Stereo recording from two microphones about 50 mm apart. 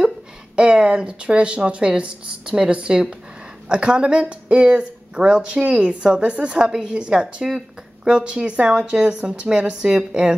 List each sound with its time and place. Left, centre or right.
0.6 s a woman's voice: right